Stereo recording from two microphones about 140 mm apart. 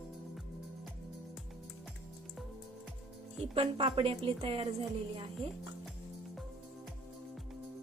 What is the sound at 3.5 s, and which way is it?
A woman's voice, 40° right (ahead or behind).